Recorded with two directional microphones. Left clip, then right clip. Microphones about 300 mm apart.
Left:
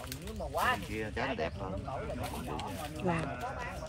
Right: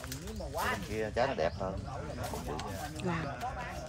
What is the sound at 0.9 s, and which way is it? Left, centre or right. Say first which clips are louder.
Speech: right 4 dB; right.